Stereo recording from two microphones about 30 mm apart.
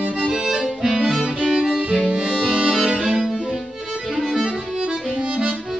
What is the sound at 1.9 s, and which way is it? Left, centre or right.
Music, right.